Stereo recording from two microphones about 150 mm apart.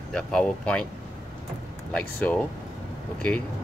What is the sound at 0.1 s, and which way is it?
Speech, 5° left (ahead or behind).